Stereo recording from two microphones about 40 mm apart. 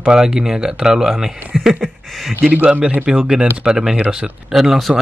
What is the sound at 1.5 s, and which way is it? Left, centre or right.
Speech, centre.